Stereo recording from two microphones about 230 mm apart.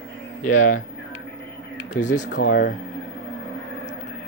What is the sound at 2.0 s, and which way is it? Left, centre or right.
Speech, left.